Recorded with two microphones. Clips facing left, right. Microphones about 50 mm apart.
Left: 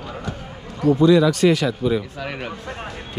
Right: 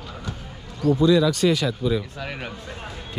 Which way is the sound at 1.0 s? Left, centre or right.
Left.